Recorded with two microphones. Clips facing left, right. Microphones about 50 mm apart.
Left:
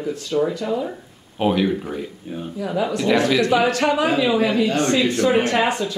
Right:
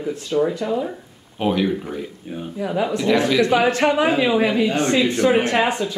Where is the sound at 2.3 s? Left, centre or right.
Centre.